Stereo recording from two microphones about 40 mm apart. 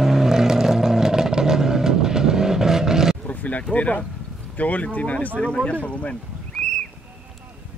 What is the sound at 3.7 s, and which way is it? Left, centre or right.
Speech, left.